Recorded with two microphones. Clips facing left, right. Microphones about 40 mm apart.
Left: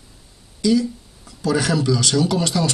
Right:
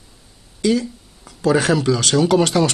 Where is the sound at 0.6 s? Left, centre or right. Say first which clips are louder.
Even; right.